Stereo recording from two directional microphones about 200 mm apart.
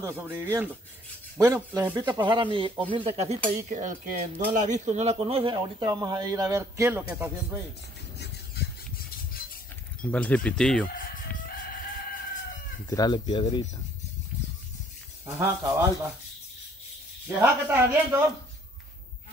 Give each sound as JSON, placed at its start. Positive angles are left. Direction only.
{"t": 0.0, "sound": "speech", "side_deg": -10}
{"t": 8.2, "sound": "a sound", "side_deg": 50}
{"t": 10.1, "sound": "speech", "side_deg": 5}
{"t": 11.0, "sound": "fowl", "side_deg": 45}
{"t": 12.9, "sound": "speech", "side_deg": 20}
{"t": 15.2, "sound": "speech", "side_deg": -10}
{"t": 17.3, "sound": "speech", "side_deg": -10}